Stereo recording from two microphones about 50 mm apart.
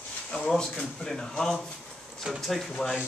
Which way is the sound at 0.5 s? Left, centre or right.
Centre.